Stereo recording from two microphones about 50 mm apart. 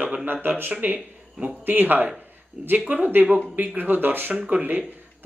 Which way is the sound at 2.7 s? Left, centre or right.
Right.